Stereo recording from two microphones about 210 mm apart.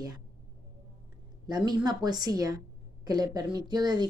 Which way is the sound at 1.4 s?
20° right (ahead or behind).